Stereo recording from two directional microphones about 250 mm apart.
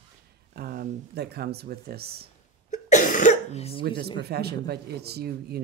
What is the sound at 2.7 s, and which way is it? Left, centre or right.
Cough, left.